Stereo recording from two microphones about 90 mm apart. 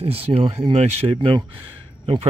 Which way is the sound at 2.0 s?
90° right.